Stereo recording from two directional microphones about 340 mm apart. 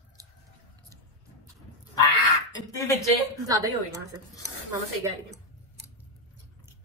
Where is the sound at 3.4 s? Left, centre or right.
Centre.